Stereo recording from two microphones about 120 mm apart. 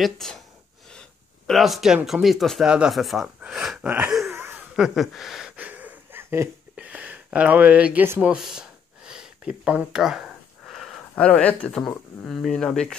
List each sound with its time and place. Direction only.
0.0 s speech: centre (ahead or behind)
1.5 s speech: centre (ahead or behind)
4.3 s a sound: 20° right (ahead or behind)
4.7 s speech: 5° right (ahead or behind)
5.6 s a sound: 15° right (ahead or behind)
6.8 s speech: 10° right (ahead or behind); by 12.9 s 5° left (ahead or behind)